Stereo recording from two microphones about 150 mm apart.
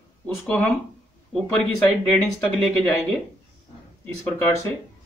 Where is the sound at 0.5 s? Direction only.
10° left (ahead or behind).